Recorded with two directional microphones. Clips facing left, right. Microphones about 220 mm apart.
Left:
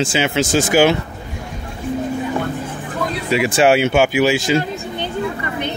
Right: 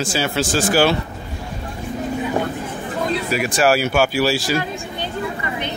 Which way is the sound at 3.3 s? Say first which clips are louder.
Left 5 dB; 25° left (ahead or behind).